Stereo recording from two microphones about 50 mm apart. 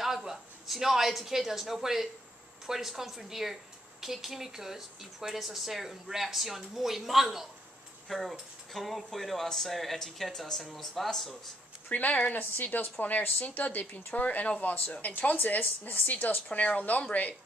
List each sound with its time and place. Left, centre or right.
0.0 s speech: centre
11.9 s a woman's voice: left